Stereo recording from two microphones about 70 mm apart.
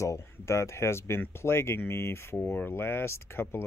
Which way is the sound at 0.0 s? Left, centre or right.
Left.